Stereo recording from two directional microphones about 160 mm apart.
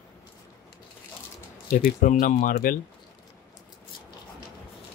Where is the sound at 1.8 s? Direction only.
55° left (ahead or behind).